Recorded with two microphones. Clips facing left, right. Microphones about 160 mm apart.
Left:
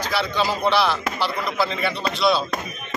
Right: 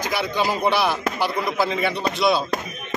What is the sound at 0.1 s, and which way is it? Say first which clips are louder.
Speech: even; 15° right (ahead or behind).